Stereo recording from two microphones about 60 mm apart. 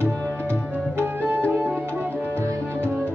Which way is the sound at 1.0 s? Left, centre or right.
Right.